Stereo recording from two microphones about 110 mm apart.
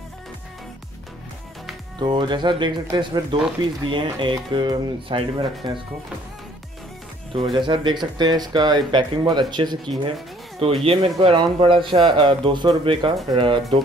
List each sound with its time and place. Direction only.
2.0 s speech: 45° right (ahead or behind)
7.3 s speech: 50° right (ahead or behind)
10.6 s speech: 55° right (ahead or behind)